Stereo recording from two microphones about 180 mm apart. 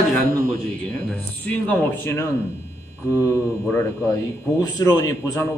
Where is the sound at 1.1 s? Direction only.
10° left (ahead or behind).